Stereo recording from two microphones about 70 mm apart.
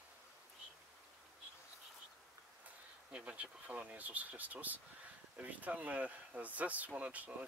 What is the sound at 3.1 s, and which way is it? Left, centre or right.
Speech, centre.